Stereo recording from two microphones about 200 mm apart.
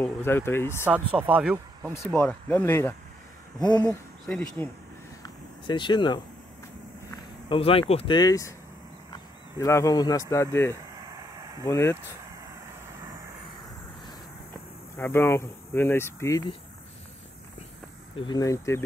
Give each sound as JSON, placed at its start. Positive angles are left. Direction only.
{"t": 0.0, "sound": "speech", "side_deg": 10}
{"t": 1.2, "sound": "speech", "side_deg": -10}
{"t": 2.0, "sound": "speech", "side_deg": 5}
{"t": 5.2, "sound": "a sound", "side_deg": 25}
{"t": 7.4, "sound": "speech", "side_deg": 25}
{"t": 9.6, "sound": "speech", "side_deg": 15}
{"t": 11.1, "sound": "a sound", "side_deg": -20}
{"t": 11.6, "sound": "speech", "side_deg": 15}
{"t": 15.0, "sound": "speech", "side_deg": 10}
{"t": 18.1, "sound": "speech", "side_deg": 20}